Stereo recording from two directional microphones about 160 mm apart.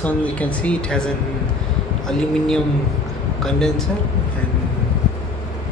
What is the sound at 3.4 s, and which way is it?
Speech, 5° left (ahead or behind).